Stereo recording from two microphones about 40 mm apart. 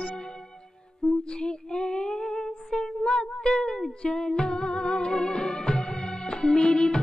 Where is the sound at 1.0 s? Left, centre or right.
Centre.